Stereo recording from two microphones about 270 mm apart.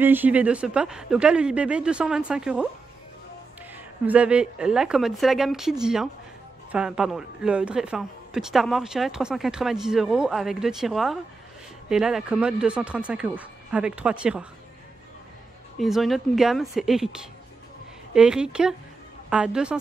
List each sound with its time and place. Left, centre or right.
0.0 s a woman's voice: centre
3.7 s a woman's voice: centre
15.8 s a woman's voice: centre
18.1 s a woman's voice: centre